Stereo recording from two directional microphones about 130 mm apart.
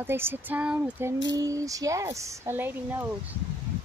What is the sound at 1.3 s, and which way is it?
Speech, 25° right (ahead or behind).